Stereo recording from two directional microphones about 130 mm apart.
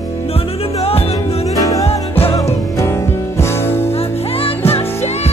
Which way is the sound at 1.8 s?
50° left (ahead or behind).